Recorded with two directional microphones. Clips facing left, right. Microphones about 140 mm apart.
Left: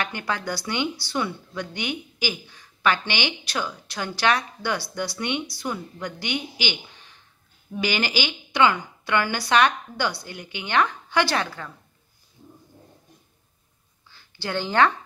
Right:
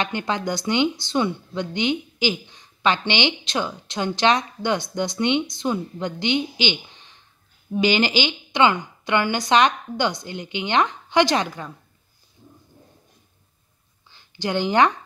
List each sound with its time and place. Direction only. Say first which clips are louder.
0.0 s speech: right 4 dB; 20° right (ahead or behind)
14.1 s speech: right 4 dB; 15° right (ahead or behind)